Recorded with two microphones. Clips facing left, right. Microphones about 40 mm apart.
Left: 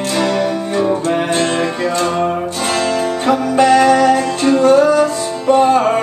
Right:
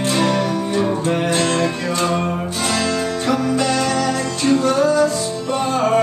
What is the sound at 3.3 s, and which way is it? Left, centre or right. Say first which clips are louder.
Music: left 8 dB; left.